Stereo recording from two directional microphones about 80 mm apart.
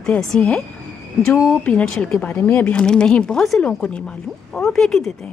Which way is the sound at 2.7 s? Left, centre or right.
Centre.